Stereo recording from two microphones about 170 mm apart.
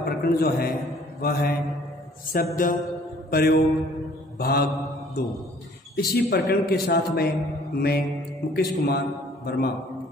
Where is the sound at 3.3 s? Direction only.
65° left (ahead or behind).